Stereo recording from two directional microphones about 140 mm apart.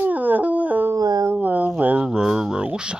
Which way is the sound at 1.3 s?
10° right (ahead or behind).